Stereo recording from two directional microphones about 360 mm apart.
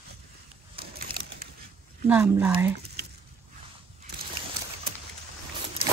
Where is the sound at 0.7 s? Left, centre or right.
Right.